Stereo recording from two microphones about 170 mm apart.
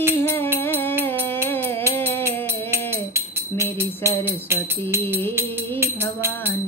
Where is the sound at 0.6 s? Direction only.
10° left (ahead or behind).